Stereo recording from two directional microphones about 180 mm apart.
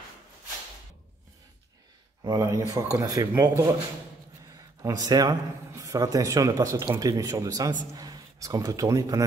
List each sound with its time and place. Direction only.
2.2 s speech: 20° right (ahead or behind)
4.8 s a man's voice: 20° right (ahead or behind)